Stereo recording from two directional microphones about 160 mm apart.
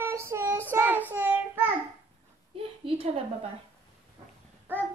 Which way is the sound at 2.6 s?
35° right (ahead or behind).